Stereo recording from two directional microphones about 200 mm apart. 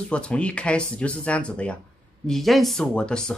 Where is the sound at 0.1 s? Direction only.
5° left (ahead or behind).